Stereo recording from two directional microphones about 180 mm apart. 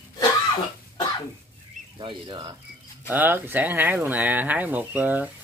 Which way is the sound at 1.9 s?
25° right (ahead or behind).